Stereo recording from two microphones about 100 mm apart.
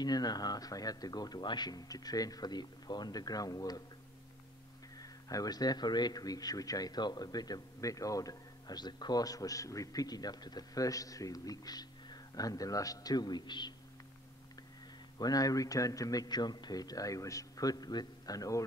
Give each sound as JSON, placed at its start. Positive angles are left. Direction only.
{"t": 0.0, "sound": "a man's voice", "side_deg": 40}
{"t": 4.9, "sound": "a man's voice", "side_deg": 40}
{"t": 15.1, "sound": "a man's voice", "side_deg": 40}